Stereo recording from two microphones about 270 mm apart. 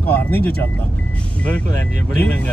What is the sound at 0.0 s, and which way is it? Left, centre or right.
Speech, centre.